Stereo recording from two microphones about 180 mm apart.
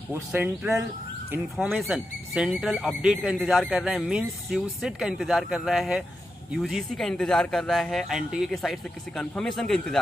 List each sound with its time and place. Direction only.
0.1 s speech: 10° right (ahead or behind)